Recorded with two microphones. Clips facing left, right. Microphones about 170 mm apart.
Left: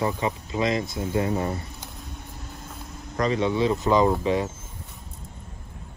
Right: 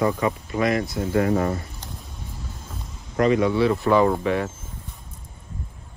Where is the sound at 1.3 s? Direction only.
60° right (ahead or behind).